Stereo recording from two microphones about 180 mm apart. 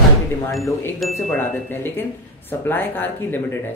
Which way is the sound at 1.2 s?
10° left (ahead or behind).